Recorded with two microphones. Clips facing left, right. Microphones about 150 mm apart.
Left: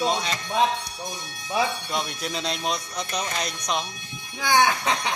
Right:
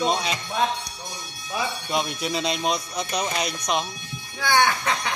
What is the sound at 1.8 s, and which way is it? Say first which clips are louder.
Speech: right 3 dB; 10° right (ahead or behind).